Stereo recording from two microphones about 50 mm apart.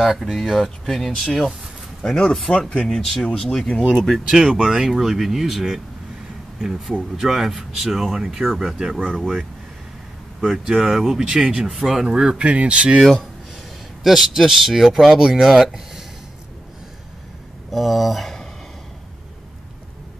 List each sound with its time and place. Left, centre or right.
0.0 s speech: centre
2.7 s speech: centre
4.3 s speech: centre
9.1 s speech: centre
10.6 s speech: centre
14.0 s speech: centre
17.6 s speech: centre